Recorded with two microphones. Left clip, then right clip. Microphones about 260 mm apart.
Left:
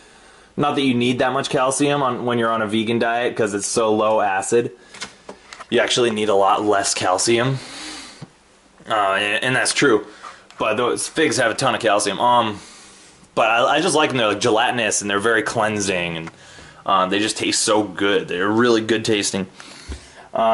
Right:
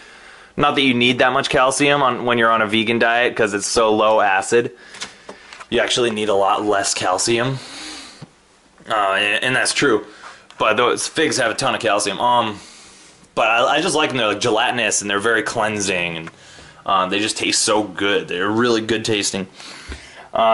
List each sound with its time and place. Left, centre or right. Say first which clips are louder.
0.6 s speech: right 3 dB; centre